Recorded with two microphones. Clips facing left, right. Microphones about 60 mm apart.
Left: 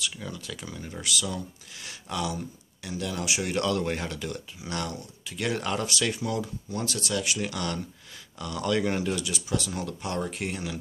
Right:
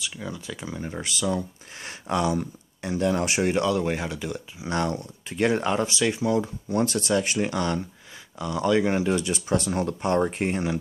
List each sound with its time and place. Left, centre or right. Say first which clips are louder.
0.0 s speech: right 2 dB; centre; by 3.5 s right
3.5 s speech: right 3 dB; centre
4.6 s speech: right 7 dB; right
9.2 s speech: right 5 dB; right